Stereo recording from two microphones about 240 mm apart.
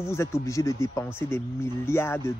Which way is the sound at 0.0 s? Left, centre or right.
Centre.